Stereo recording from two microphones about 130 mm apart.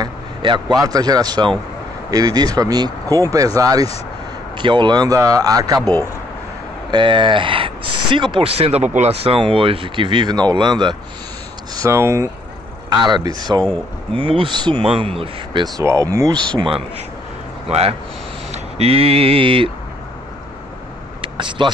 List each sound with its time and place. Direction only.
0.0 s a sound: 35° right (ahead or behind)
0.8 s speech: 30° right (ahead or behind)
4.6 s speech: 35° right (ahead or behind)
6.9 s speech: 35° right (ahead or behind)
11.7 s speech: 25° right (ahead or behind)
12.9 s speech: 35° right (ahead or behind)
14.1 s speech: 40° right (ahead or behind)
15.6 s speech: 25° right (ahead or behind)
16.5 s speech: 40° right (ahead or behind)
17.6 s speech: 50° right (ahead or behind)
21.2 s a sound: 40° right (ahead or behind)